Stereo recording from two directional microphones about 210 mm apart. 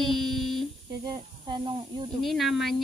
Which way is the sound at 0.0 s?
Centre (ahead or behind).